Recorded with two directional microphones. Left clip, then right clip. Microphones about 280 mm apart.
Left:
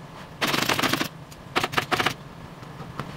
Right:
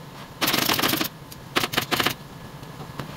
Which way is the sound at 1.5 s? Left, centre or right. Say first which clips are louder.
Even; right.